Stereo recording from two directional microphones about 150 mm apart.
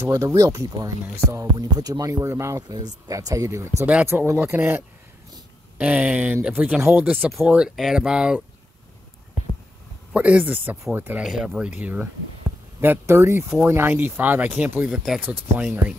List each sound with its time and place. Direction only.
0.0 s speech: 20° right (ahead or behind)
10.1 s speech: 10° right (ahead or behind)